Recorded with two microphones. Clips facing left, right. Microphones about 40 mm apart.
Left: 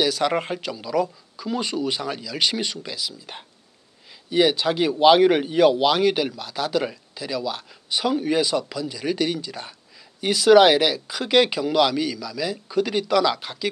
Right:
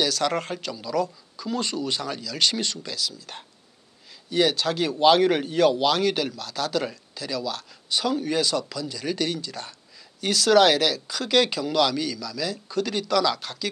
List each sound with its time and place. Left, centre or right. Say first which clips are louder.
0.0 s a man's voice: left 3 dB; centre